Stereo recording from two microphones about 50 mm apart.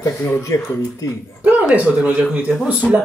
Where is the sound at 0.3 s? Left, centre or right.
Left.